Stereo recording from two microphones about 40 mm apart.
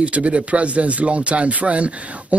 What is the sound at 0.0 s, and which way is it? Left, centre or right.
Speech, right.